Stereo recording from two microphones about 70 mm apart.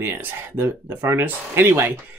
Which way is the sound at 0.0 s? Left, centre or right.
Right.